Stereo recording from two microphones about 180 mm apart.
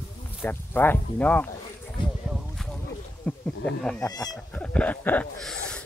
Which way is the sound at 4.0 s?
20° left (ahead or behind).